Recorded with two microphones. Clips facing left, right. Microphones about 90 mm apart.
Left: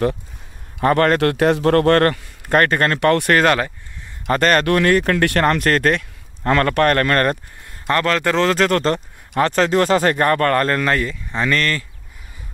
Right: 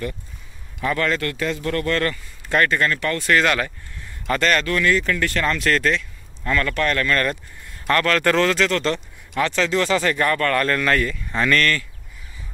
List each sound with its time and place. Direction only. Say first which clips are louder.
0.7 s speech: left 7 dB; 50° left (ahead or behind)
2.9 s speech: left 6 dB; 60° left (ahead or behind)
3.3 s speech: left 4 dB; 40° left (ahead or behind)
4.6 s speech: left 5 dB; 55° left (ahead or behind)
7.9 s speech: left 1 dB; 25° left (ahead or behind)
8.5 s speech: left 4 dB; 45° left (ahead or behind); by 11.8 s 25° left (ahead or behind)